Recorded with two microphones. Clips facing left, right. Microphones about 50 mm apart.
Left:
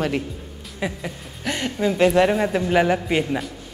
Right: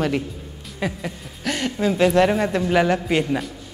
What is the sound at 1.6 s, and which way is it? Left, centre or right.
A man's voice, centre.